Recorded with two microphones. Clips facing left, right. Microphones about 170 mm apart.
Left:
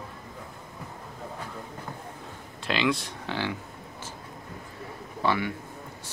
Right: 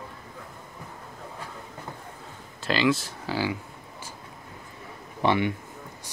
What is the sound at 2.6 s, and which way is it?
Speech, centre (ahead or behind).